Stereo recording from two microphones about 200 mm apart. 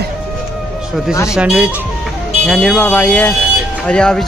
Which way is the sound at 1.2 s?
5° right (ahead or behind).